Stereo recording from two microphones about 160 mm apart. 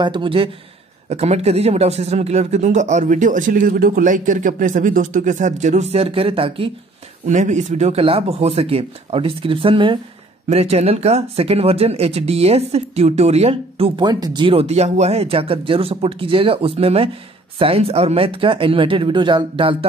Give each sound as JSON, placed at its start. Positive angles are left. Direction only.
{"t": 0.0, "sound": "speech", "side_deg": -30}
{"t": 7.2, "sound": "speech", "side_deg": -50}